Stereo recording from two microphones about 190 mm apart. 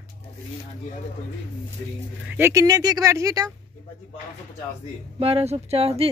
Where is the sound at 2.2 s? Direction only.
10° right (ahead or behind).